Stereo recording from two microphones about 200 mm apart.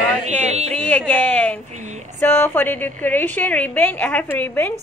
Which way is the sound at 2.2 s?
10° left (ahead or behind).